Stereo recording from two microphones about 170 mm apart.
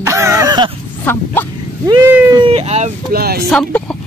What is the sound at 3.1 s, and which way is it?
Speech, 65° right (ahead or behind).